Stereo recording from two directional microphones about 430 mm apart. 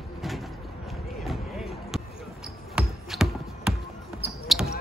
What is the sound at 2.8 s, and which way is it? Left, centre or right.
Music, centre.